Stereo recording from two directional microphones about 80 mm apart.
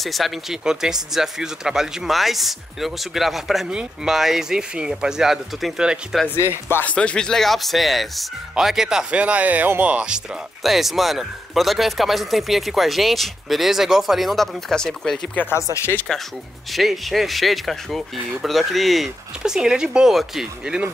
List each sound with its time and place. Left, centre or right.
0.0 s speech: centre
6.7 s speech: centre
10.6 s speech: centre
15.5 s speech: left
16.1 s speech: centre